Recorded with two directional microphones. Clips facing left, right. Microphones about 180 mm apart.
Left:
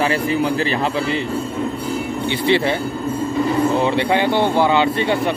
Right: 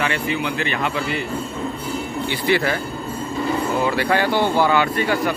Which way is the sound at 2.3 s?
25° left (ahead or behind).